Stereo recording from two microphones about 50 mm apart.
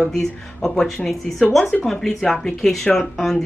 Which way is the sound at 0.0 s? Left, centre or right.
Centre.